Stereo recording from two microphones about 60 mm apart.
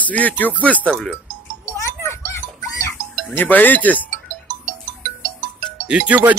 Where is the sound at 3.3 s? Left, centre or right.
Left.